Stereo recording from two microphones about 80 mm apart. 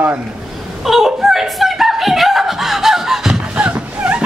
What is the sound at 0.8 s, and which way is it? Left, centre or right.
Snicker, centre.